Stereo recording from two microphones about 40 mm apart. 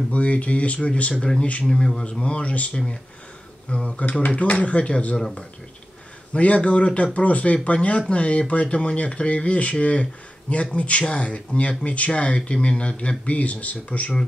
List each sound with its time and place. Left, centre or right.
0.1 s speech: left
1.7 s speech: centre
6.3 s speech: left